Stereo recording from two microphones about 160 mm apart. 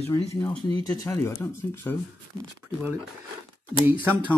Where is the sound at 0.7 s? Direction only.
25° left (ahead or behind).